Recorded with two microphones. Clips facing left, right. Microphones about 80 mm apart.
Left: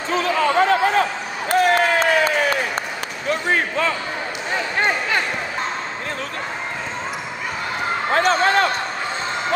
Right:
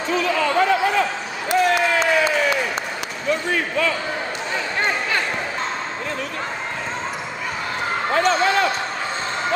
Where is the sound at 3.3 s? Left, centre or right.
Left.